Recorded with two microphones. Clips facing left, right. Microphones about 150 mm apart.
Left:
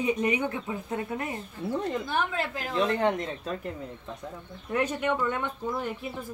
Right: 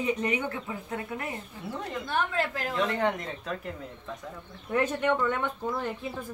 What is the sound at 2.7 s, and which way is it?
Speech, 25° left (ahead or behind).